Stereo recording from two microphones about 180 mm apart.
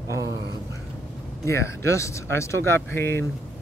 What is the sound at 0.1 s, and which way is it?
Speech, 15° right (ahead or behind).